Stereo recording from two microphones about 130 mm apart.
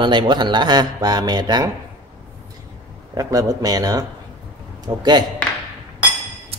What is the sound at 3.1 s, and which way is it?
Speech, 30° right (ahead or behind).